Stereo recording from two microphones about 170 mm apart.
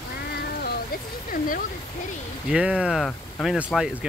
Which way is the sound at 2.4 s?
5° right (ahead or behind).